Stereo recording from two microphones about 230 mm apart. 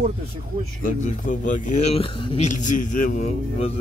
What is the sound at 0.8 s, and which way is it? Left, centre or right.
Speech, left.